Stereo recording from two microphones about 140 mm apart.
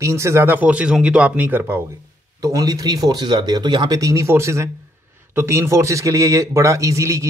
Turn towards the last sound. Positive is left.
turn(degrees=-20)  # may be behind; listen again after turning